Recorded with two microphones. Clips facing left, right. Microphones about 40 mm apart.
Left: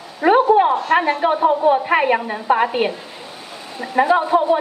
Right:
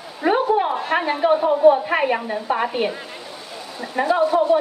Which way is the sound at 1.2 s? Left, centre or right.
Centre.